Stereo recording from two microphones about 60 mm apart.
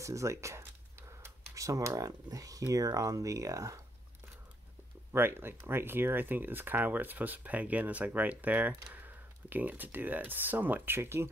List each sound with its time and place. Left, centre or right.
0.0 s speech: right
1.5 s speech: right
5.1 s speech: right